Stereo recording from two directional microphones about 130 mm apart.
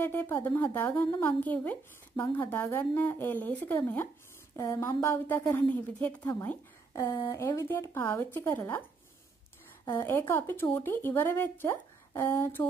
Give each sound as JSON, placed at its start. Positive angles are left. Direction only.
{"t": 0.0, "sound": "a woman's voice", "side_deg": 20}
{"t": 7.0, "sound": "a woman's voice", "side_deg": 30}
{"t": 9.8, "sound": "a woman's voice", "side_deg": 20}